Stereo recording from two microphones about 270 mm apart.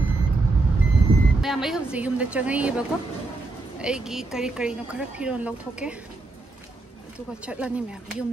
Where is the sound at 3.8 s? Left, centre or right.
Centre.